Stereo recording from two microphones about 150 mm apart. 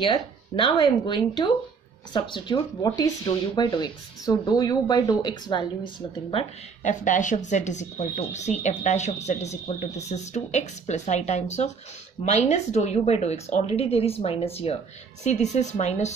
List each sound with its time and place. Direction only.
0.0 s speech: 30° left (ahead or behind)
6.8 s speech: 55° left (ahead or behind)